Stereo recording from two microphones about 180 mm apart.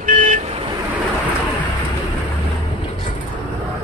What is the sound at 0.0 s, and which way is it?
Vehicle, 45° right (ahead or behind).